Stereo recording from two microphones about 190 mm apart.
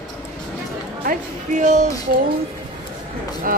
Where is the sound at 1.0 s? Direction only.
45° right (ahead or behind).